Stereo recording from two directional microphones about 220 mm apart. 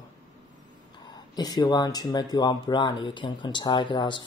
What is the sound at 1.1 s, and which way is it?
Speech, 20° left (ahead or behind).